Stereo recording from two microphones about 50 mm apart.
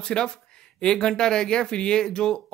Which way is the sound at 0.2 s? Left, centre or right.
Centre.